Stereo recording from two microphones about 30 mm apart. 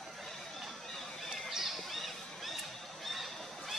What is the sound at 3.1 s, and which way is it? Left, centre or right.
Goose, centre.